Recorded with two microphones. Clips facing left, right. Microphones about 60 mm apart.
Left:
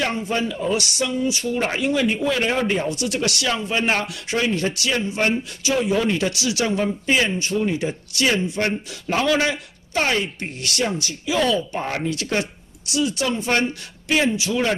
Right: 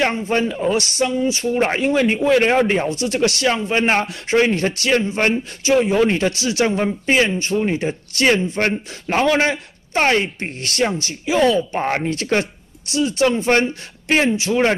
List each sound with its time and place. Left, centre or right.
0.1 s speech: right